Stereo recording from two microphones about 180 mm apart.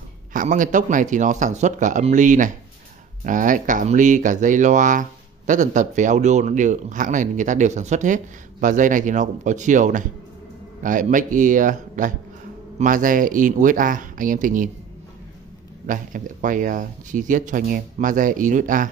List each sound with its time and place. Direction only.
0.3 s speech: 45° right (ahead or behind)
15.9 s speech: 45° right (ahead or behind)